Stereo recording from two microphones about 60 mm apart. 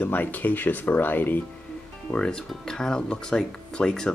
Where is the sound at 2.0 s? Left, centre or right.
Centre.